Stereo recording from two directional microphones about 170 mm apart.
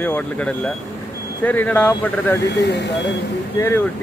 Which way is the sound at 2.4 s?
90° left.